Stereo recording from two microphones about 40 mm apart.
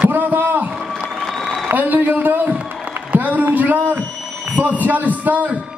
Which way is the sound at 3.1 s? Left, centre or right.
Right.